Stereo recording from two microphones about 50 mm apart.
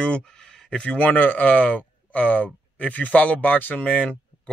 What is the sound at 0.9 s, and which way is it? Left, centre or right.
Speech, left.